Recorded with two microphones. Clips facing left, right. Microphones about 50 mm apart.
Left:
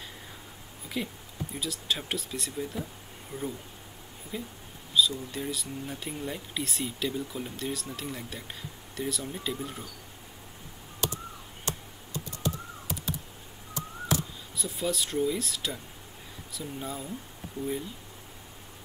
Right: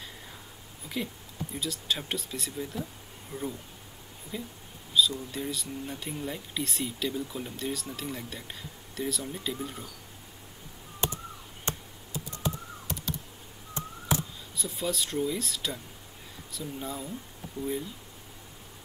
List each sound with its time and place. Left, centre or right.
1.0 s speech: centre
3.3 s speech: left
4.3 s speech: centre
11.0 s a sound: right
14.6 s speech: centre
17.6 s speech: left